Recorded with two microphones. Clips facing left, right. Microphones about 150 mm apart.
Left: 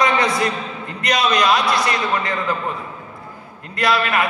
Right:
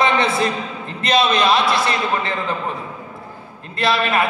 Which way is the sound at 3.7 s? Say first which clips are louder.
Even; 30° right (ahead or behind).